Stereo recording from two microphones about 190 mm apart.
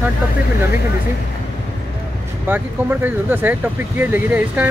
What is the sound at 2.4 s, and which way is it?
Speech, 10° right (ahead or behind).